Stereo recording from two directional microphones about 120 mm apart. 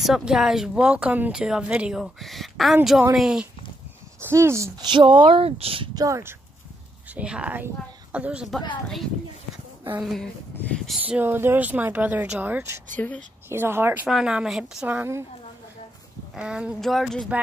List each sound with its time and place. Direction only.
0.0 s speech: 5° right (ahead or behind)
4.2 s speech: 20° right (ahead or behind)
4.7 s speech: 40° right (ahead or behind)
5.9 s speech: 25° right (ahead or behind)
7.2 s speech: 10° right (ahead or behind)
8.8 s speech: 5° left (ahead or behind)
11.0 s speech: 15° right (ahead or behind)
14.0 s speech: 5° right (ahead or behind)
16.3 s speech: 10° right (ahead or behind)